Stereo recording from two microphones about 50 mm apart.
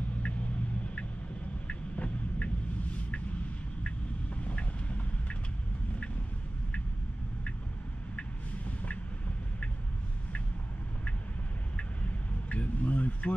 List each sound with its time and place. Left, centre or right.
1.7 s vehicle: left
4.4 s vehicle: left
8.2 s vehicle: left
12.4 s a sound: left